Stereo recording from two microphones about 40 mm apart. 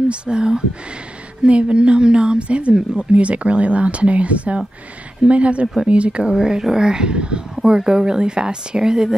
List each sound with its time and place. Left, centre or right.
0.1 s a woman's voice: right
6.3 s a woman's voice: centre